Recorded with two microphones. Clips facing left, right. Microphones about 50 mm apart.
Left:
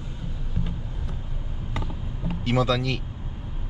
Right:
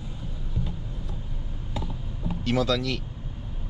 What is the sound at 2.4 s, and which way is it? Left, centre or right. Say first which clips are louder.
Speech: left 1 dB; centre.